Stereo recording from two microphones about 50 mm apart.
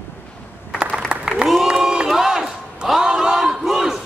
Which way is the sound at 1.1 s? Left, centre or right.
Centre.